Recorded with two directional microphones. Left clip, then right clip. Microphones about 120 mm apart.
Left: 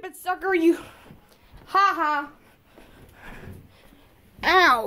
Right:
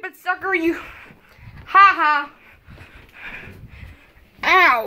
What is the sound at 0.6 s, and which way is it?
Speech, 45° left (ahead or behind).